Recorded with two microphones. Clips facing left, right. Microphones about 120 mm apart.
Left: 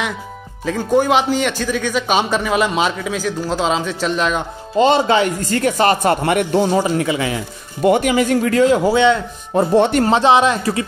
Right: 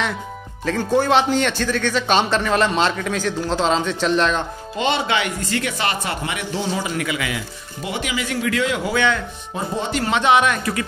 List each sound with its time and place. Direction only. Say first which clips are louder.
0.7 s a man's voice: left 3 dB; 10° left (ahead or behind)
4.7 s speech: left 8 dB; 40° left (ahead or behind)
7.0 s speech: left 5 dB; 30° left (ahead or behind)
7.8 s speech: left 12 dB; 50° left (ahead or behind)
8.9 s speech: left 6 dB; 25° left (ahead or behind)
9.5 s speech: left 11 dB; 60° left (ahead or behind)
10.0 s speech: left 4 dB; 35° left (ahead or behind)